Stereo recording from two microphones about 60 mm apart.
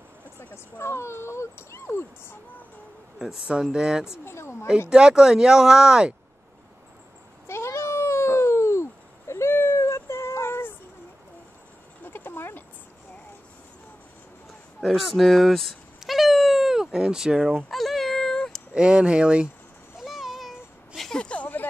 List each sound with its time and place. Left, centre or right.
0.7 s speech: left
3.2 s speech: centre
4.2 s speech: left
4.7 s speech: centre
7.4 s cat: left
9.3 s a sound: left
12.0 s a sound: left
14.9 s speech: centre
17.6 s meow: centre
18.7 s speech: centre
20.0 s a sound: centre
21.1 s vehicle: centre